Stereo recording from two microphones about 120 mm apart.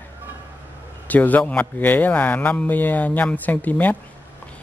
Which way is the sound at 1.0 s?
15° left (ahead or behind).